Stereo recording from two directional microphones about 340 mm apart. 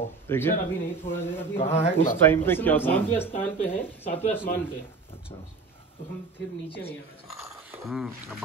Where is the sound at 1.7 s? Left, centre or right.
Centre.